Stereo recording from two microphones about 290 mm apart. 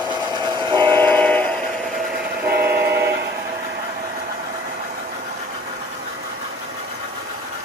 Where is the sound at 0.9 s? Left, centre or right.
Centre.